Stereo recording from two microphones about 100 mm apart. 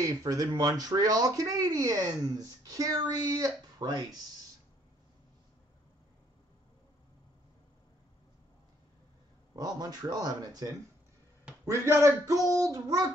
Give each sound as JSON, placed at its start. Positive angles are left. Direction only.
{"t": 0.0, "sound": "speech", "side_deg": -35}
{"t": 9.6, "sound": "speech", "side_deg": -40}